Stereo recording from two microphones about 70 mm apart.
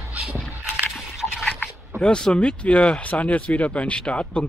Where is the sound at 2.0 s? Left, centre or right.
Centre.